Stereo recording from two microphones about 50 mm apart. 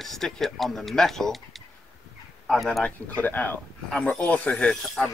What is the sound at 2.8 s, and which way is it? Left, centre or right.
Speech, left.